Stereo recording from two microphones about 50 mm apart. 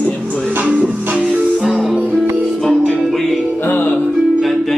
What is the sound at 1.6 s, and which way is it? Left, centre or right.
Music, centre.